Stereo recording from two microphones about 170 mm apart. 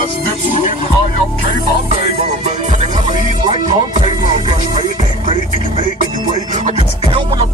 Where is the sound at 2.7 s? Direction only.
45° right (ahead or behind).